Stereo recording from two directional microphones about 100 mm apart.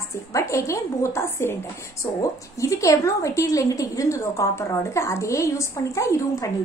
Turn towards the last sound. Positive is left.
turn(degrees=30)  # may be behind; listen again after turning